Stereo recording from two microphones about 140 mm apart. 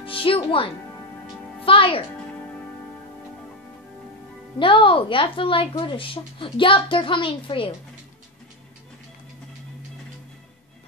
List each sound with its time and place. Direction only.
0.0 s speech: 40° left (ahead or behind)
4.6 s a woman's voice: 40° left (ahead or behind)